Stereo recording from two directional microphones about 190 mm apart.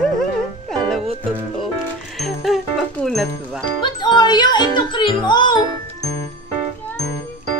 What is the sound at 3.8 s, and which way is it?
Music, 25° left (ahead or behind).